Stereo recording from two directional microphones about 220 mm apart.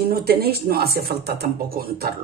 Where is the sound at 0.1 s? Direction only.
45° right (ahead or behind).